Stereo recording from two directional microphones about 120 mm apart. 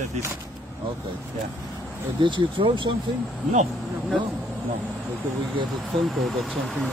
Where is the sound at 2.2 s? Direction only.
40° right (ahead or behind).